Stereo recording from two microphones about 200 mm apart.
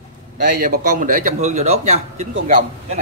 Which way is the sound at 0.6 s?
45° right (ahead or behind).